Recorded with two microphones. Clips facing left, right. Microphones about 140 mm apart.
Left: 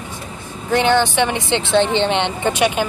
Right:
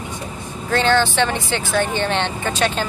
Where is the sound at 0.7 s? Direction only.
15° left (ahead or behind).